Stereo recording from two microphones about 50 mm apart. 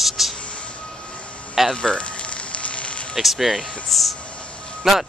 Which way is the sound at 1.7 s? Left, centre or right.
Centre.